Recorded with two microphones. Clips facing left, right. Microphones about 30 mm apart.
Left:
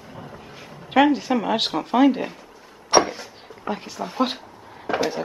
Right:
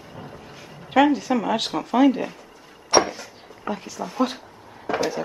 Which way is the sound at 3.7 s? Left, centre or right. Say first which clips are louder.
Left 1 dB; left.